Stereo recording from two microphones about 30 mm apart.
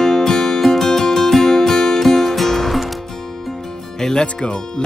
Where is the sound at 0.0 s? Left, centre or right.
Centre.